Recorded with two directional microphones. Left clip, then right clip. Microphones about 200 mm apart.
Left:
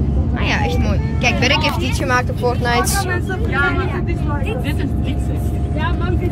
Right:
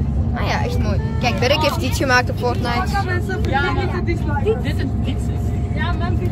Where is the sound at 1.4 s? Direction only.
30° right (ahead or behind).